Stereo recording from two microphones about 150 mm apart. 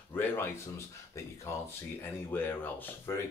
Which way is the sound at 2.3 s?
15° left (ahead or behind).